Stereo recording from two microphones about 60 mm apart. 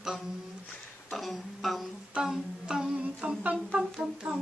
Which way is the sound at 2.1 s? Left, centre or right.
Centre.